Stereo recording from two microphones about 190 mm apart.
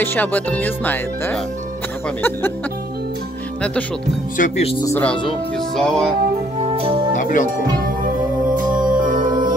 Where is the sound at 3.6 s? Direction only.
5° left (ahead or behind).